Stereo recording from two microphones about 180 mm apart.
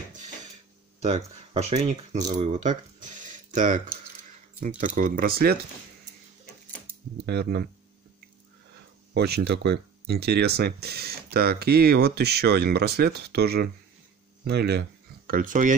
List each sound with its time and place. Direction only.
1.0 s speech: 40° right (ahead or behind); by 5.7 s 60° right (ahead or behind)
7.2 s speech: 65° right (ahead or behind)
9.1 s speech: 65° right (ahead or behind); by 15.7 s 45° right (ahead or behind)